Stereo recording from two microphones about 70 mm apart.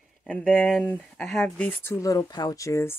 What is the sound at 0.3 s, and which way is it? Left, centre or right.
Speech, centre.